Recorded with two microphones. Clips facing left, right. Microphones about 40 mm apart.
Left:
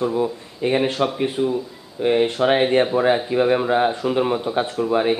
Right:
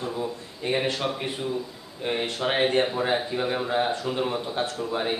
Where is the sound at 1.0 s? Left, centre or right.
Centre.